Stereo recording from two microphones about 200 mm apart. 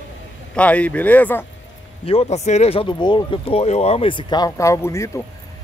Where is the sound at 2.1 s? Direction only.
35° left (ahead or behind).